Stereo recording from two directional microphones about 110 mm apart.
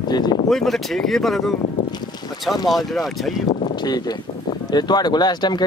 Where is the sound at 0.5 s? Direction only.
Centre (ahead or behind).